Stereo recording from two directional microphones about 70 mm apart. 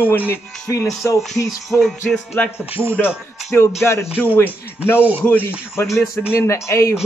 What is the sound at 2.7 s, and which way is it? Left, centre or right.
Speech, right.